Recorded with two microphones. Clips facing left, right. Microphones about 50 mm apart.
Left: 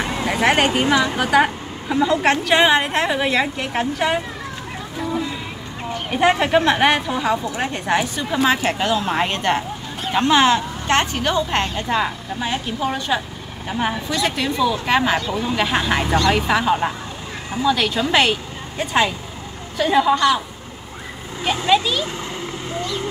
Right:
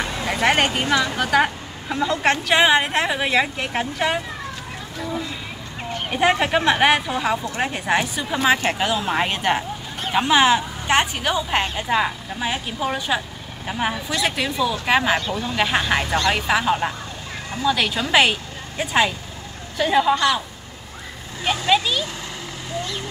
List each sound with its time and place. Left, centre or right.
0.3 s a woman's voice: centre
0.7 s a woman's voice: centre
4.9 s a sound: centre
6.0 s a woman's voice: centre
21.6 s a woman's voice: centre
22.7 s vehicle: left